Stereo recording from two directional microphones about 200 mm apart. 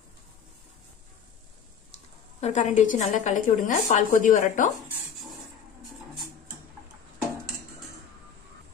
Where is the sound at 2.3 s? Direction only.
35° left (ahead or behind).